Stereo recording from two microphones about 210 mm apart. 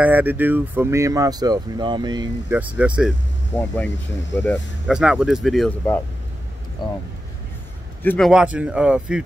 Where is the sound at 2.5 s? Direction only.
5° right (ahead or behind).